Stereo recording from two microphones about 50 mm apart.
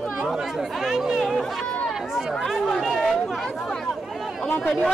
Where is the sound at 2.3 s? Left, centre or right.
Centre.